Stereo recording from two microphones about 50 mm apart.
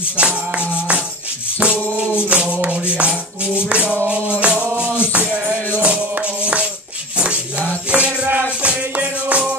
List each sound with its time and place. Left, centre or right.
0.2 s music: right
2.1 s music: right